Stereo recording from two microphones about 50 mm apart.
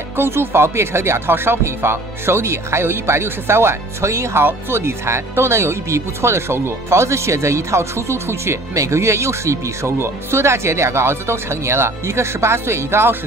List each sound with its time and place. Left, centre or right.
0.1 s speech: right
4.5 s speech: right